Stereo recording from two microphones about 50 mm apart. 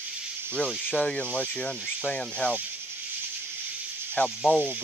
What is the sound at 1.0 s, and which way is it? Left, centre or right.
Speech, left.